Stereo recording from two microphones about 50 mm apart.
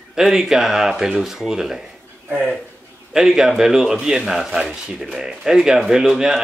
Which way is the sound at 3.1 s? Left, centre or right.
Centre.